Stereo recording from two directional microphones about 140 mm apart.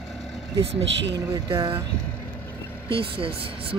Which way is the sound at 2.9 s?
40° right (ahead or behind).